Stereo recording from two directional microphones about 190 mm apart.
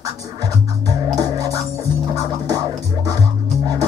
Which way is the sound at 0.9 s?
20° right (ahead or behind).